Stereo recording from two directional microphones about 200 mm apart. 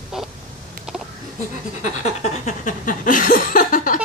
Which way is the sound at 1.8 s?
35° left (ahead or behind).